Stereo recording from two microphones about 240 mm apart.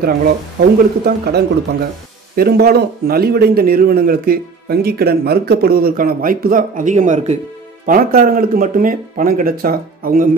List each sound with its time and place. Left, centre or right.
0.0 s a man's voice: right